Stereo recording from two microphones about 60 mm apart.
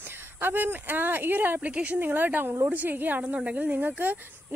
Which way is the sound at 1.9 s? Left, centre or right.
Right.